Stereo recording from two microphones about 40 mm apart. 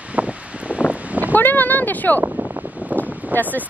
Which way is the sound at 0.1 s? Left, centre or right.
Right.